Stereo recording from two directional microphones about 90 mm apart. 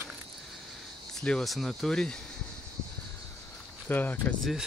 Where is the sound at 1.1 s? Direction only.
5° left (ahead or behind).